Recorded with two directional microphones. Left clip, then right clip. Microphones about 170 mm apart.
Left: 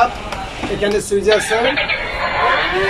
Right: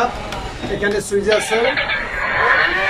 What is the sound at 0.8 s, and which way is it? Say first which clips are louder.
Speech: left 2 dB; 10° left (ahead or behind).